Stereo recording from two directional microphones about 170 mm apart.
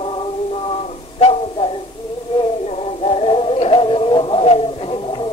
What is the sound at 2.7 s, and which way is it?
Synthetic singing, 35° left (ahead or behind).